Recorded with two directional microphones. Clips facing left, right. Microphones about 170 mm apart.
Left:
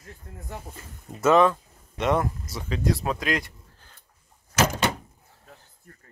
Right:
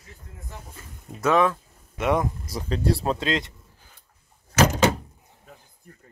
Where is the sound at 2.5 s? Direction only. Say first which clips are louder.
Right 2 dB; 35° right (ahead or behind).